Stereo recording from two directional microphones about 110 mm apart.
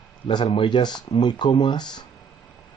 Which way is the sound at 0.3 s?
50° left (ahead or behind).